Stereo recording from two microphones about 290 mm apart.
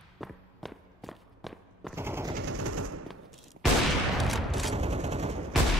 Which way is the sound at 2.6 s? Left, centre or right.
Right.